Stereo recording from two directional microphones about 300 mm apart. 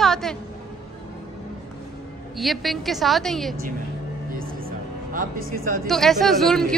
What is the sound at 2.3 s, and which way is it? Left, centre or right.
A woman's voice, centre.